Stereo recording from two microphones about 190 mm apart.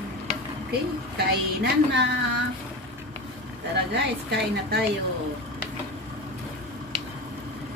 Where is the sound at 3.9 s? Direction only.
60° right (ahead or behind).